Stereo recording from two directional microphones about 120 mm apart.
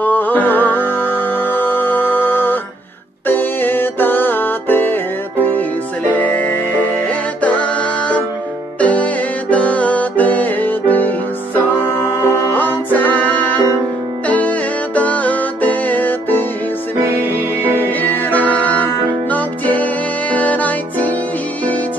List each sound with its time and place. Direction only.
0.0 s music: 15° left (ahead or behind)
6.1 s music: 15° left (ahead or behind)
17.7 s music: 15° left (ahead or behind)